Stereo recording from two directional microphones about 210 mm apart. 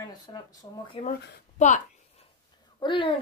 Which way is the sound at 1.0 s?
35° left (ahead or behind).